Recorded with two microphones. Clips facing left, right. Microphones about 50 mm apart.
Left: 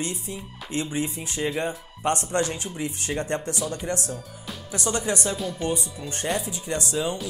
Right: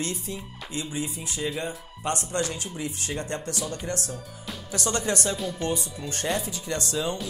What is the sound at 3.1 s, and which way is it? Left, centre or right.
Music, left.